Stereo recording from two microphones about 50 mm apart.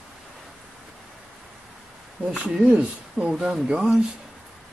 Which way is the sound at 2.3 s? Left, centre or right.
Centre.